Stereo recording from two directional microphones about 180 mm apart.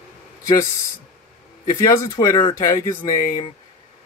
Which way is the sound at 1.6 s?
20° left (ahead or behind).